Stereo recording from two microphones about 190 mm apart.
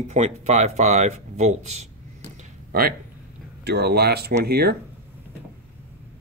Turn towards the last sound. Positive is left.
turn(degrees=-55)  # may be behind; listen again after turning